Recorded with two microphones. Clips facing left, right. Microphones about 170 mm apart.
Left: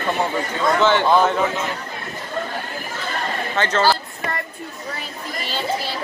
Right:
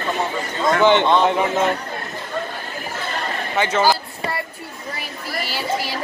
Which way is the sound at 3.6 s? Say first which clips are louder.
Right 1 dB; 10° right (ahead or behind).